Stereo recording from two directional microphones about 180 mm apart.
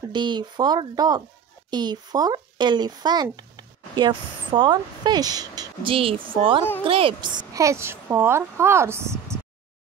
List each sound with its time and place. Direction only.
0.1 s speech: 25° right (ahead or behind)